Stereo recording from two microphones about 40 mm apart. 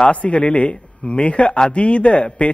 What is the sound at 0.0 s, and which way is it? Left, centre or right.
A man's voice, left.